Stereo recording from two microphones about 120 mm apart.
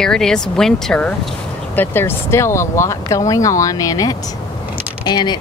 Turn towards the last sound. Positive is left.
turn(degrees=35)  # may be behind; listen again after turning